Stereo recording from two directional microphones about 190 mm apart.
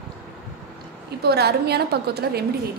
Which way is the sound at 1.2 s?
60° right (ahead or behind).